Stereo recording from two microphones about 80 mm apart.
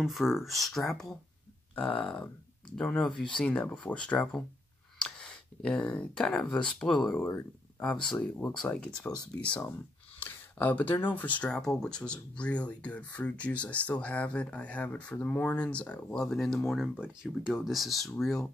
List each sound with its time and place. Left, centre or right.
0.0 s speech: centre
1.8 s speech: centre
4.9 s a sound: centre
6.4 s speech: centre
9.7 s a sound: left
11.1 s speech: centre